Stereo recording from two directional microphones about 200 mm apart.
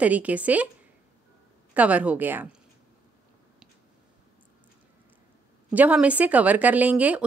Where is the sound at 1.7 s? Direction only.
5° right (ahead or behind).